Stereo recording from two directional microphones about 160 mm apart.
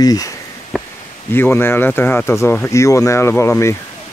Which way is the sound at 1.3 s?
15° left (ahead or behind).